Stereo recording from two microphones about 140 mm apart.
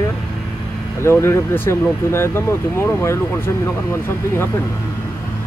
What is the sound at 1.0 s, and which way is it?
Speech, 15° left (ahead or behind).